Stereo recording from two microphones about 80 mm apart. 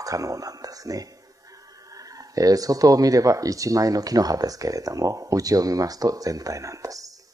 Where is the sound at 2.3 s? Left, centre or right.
Right.